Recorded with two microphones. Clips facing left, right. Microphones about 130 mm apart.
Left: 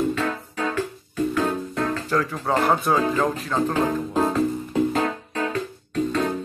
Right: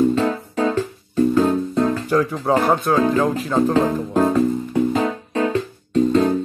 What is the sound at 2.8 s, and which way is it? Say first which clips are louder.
Speech: right 4 dB; 5° left (ahead or behind).